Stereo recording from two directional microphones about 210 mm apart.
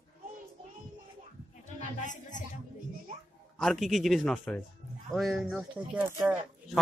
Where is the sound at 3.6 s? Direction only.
Centre (ahead or behind).